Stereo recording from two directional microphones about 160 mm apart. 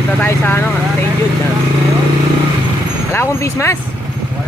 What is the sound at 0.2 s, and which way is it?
Speech, 15° left (ahead or behind).